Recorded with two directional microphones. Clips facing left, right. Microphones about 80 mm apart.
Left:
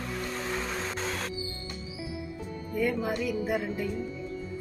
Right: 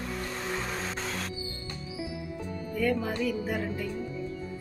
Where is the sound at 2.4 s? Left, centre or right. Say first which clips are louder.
Right 1 dB; left.